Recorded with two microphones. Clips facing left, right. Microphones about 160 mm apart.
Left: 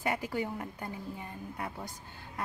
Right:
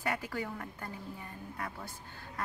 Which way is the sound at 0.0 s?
20° left (ahead or behind).